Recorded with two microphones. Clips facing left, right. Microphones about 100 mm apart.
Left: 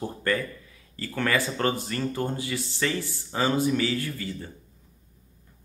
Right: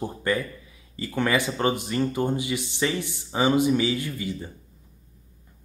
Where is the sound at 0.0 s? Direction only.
15° right (ahead or behind).